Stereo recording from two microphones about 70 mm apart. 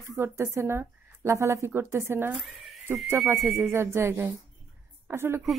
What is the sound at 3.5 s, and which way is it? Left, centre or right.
A woman's voice, right.